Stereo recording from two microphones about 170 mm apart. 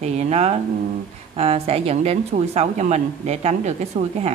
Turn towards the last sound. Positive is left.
turn(degrees=-40)  # may be behind; listen again after turning